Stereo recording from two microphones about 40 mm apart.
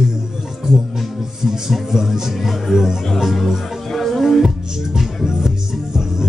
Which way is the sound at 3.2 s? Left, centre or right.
Centre.